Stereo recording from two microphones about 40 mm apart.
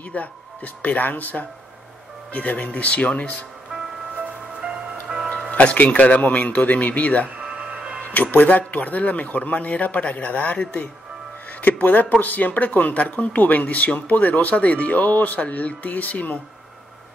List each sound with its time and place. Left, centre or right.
0.1 s speech: left
2.3 s speech: left
4.6 s music: right
5.9 s speech: left
7.5 s music: right
8.0 s speech: left
11.6 s speech: left